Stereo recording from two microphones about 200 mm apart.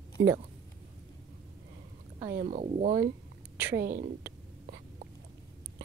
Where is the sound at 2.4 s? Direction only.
30° right (ahead or behind).